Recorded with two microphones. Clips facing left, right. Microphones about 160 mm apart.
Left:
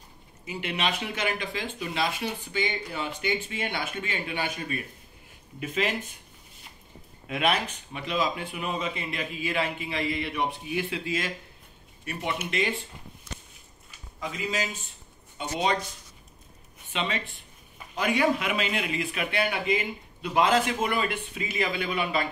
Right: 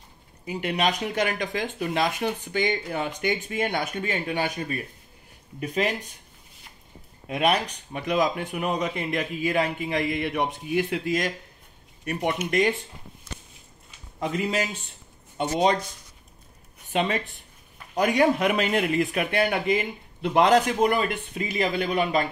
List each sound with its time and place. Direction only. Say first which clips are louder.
0.5 s speech: right 5 dB; 40° right (ahead or behind)
7.2 s speech: right 3 dB; 40° right (ahead or behind)
14.2 s a man's voice: right 5 dB; 60° right (ahead or behind)
16.9 s speech: right 6 dB; 45° right (ahead or behind)